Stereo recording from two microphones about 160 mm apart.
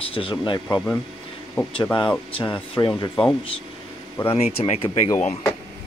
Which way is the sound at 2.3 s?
30° left (ahead or behind).